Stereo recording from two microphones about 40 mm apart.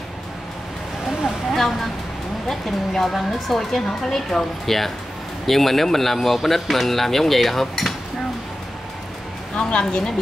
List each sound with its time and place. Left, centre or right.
1.5 s a woman's voice: centre
9.6 s a woman's voice: left